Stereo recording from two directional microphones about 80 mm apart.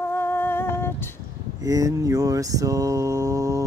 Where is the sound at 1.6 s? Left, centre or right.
Right.